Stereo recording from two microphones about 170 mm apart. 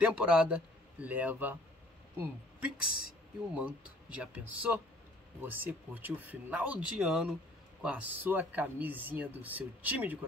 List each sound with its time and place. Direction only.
0.0 s a man's voice: 5° right (ahead or behind)